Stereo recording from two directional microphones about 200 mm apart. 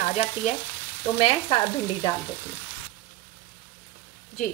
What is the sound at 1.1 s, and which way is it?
Frying, 25° left (ahead or behind).